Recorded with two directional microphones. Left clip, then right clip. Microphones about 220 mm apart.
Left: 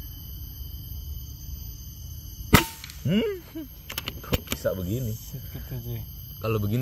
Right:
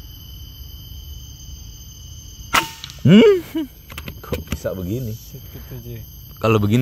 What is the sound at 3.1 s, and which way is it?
Speech, 50° right (ahead or behind).